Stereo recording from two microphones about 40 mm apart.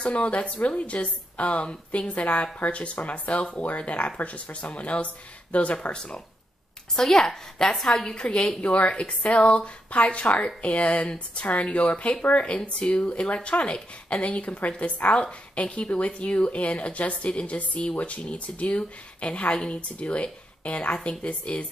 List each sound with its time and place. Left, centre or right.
0.0 s a woman's voice: left
5.9 s a woman's voice: left